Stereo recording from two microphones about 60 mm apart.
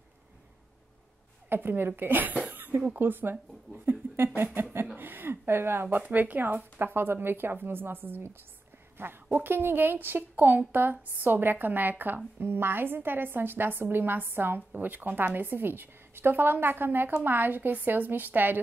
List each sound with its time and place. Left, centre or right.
1.5 s a woman's voice: right
2.5 s a sound: right
2.9 s a woman's voice: right